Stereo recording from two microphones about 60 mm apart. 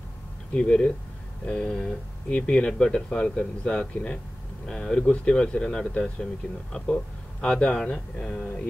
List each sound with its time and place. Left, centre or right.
0.6 s speech: centre